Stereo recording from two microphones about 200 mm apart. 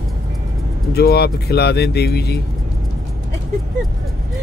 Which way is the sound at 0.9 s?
50° left (ahead or behind).